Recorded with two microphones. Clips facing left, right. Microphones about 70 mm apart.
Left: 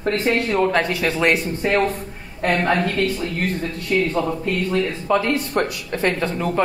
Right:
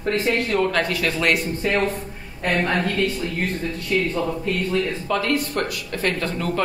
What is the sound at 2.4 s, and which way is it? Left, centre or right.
A woman's voice, left.